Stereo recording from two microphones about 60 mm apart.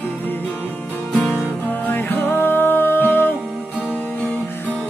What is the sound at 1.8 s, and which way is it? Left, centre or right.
Music, left.